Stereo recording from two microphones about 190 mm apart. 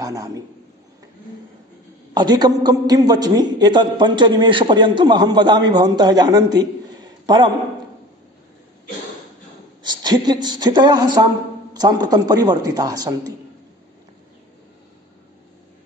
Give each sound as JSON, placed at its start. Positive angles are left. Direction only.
{"t": 0.0, "sound": "a man's voice", "side_deg": -20}
{"t": 2.1, "sound": "a man's voice", "side_deg": -20}
{"t": 10.0, "sound": "a man's voice", "side_deg": -20}